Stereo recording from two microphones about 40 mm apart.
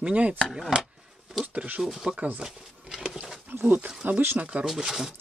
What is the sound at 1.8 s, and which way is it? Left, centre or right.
Speech, centre.